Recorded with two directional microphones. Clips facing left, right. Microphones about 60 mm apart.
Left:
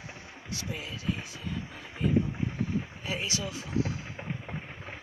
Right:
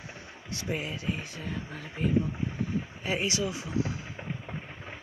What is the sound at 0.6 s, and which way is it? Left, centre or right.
Speech, right.